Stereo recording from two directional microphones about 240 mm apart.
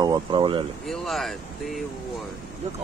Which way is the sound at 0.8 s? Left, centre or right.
Centre.